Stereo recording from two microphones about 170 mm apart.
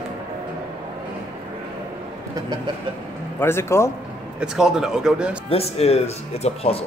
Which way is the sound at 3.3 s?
15° left (ahead or behind).